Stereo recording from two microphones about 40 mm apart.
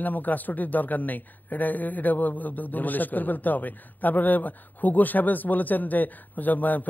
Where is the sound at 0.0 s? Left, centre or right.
Left.